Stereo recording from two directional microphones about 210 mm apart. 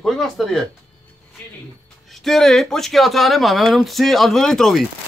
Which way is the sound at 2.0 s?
Centre (ahead or behind).